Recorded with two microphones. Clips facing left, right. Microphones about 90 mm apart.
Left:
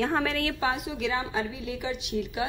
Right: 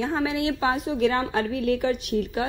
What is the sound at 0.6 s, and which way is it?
A woman's voice, 35° right (ahead or behind).